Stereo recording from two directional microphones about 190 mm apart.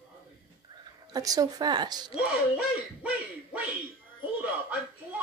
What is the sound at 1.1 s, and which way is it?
Speech, 20° right (ahead or behind).